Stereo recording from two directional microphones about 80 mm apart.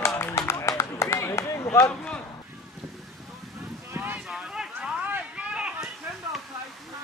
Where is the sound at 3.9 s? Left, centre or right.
Right.